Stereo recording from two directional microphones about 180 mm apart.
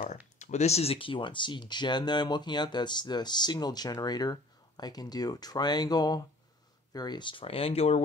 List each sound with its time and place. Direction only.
0.4 s speech: 40° left (ahead or behind)